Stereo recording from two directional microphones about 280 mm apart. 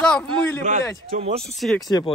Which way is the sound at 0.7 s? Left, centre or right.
Right.